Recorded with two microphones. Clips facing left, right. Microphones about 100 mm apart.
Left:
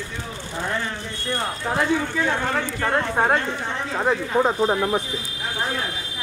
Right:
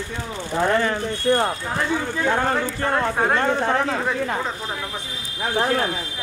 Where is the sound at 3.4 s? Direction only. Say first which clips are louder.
Right 8 dB; 60° right (ahead or behind).